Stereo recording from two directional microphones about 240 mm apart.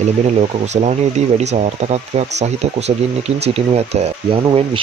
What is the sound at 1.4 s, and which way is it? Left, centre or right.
Speech, right.